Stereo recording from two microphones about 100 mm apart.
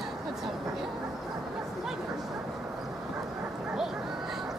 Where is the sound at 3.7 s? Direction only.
5° right (ahead or behind).